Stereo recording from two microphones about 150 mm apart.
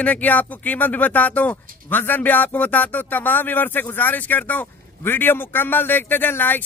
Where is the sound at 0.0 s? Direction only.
10° left (ahead or behind).